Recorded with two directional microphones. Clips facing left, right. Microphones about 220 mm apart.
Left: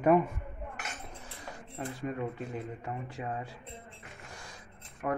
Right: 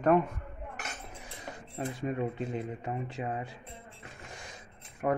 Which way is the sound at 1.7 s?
20° right (ahead or behind).